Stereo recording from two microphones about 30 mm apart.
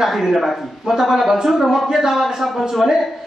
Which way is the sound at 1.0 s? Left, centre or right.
Centre.